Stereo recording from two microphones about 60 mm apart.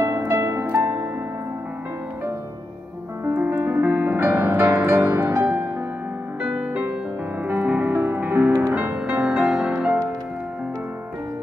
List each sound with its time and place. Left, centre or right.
0.0 s music: right
0.6 s harp: right
3.3 s music: right
5.0 s music: right
7.6 s music: right
8.7 s music: right